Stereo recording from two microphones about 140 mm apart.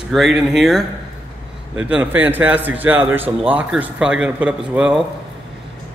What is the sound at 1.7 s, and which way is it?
Speech, 10° right (ahead or behind).